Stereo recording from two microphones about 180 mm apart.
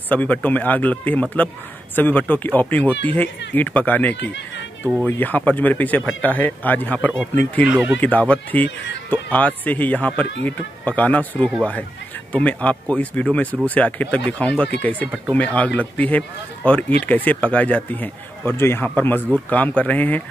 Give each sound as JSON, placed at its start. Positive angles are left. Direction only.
{"t": 0.1, "sound": "a man's voice", "side_deg": 10}
{"t": 4.2, "sound": "speech", "side_deg": 80}
{"t": 5.0, "sound": "a man's voice", "side_deg": 10}
{"t": 7.6, "sound": "speech", "side_deg": -5}
{"t": 8.0, "sound": "a man's voice", "side_deg": 10}